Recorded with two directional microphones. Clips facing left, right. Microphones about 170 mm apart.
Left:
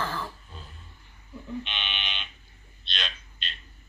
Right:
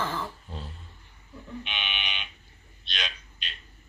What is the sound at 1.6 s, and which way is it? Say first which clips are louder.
Fire alarm: right 1 dB; 10° right (ahead or behind).